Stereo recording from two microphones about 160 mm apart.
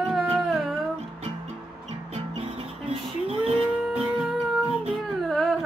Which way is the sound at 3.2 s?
40° right (ahead or behind).